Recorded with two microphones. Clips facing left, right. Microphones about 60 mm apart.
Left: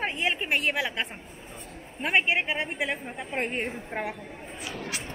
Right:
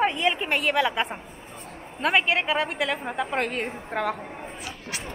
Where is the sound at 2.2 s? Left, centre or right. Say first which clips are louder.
Right 3 dB; right.